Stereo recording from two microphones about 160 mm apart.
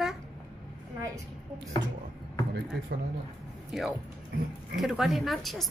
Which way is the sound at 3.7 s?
Centre (ahead or behind).